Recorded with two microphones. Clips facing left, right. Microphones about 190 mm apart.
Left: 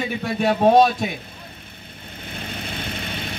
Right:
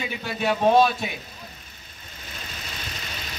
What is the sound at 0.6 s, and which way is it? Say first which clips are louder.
Speech: left 3 dB; 45° left (ahead or behind).